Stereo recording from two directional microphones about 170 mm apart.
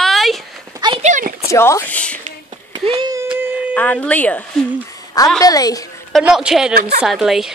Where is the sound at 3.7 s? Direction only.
10° left (ahead or behind).